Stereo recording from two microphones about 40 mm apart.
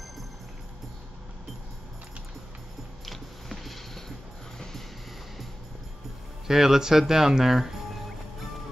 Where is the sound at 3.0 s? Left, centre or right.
Centre.